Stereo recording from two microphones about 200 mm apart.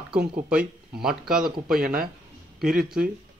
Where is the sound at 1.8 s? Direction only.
45° right (ahead or behind).